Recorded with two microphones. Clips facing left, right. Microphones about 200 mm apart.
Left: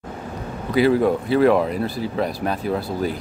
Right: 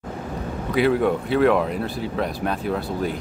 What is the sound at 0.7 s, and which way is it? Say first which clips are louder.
Speech: left 2 dB; centre (ahead or behind).